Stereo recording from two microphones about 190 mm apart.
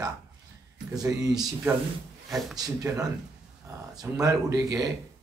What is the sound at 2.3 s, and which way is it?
Speech, centre (ahead or behind).